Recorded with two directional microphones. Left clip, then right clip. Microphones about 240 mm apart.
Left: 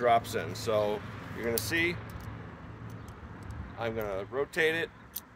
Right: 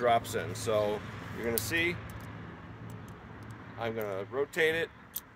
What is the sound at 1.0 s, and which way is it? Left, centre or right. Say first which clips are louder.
Vehicle: even; right.